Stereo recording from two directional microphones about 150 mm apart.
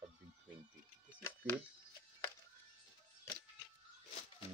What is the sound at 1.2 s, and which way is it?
Speech, 10° left (ahead or behind).